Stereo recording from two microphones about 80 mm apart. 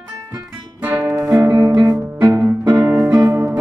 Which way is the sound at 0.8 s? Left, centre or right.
Right.